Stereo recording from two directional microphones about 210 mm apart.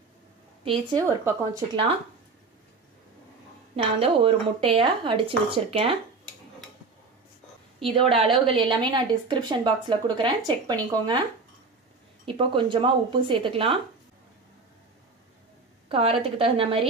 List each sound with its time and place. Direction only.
0.7 s a woman's voice: 20° right (ahead or behind)
3.7 s a woman's voice: 25° right (ahead or behind)
8.3 s a woman's voice: 25° right (ahead or behind)
12.3 s a woman's voice: 25° right (ahead or behind)
15.9 s a woman's voice: 25° right (ahead or behind)